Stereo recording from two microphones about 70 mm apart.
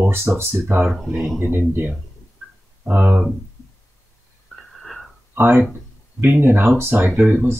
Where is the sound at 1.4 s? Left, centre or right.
Right.